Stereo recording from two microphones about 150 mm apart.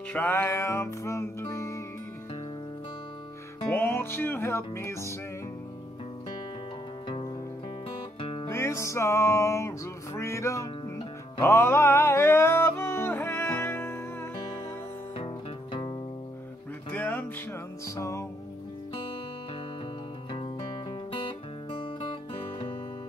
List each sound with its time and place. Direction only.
0.1 s music: 15° left (ahead or behind)
3.7 s music: 15° left (ahead or behind)
8.2 s music: 35° left (ahead or behind)
8.5 s music: 20° left (ahead or behind)
15.1 s music: 35° left (ahead or behind)
16.9 s music: 10° left (ahead or behind)
21.1 s music: 35° left (ahead or behind)